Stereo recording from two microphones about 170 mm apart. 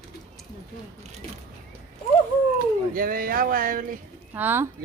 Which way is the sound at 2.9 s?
55° right (ahead or behind).